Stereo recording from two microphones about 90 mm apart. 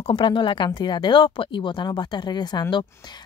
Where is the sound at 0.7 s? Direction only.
55° left (ahead or behind).